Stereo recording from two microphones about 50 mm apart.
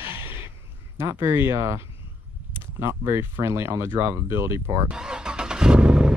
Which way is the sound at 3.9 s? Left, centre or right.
Right.